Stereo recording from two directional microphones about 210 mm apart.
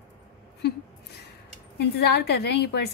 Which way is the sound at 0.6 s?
50° left (ahead or behind).